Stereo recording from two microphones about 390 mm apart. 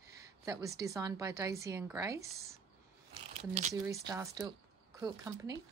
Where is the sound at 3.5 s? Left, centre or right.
Centre.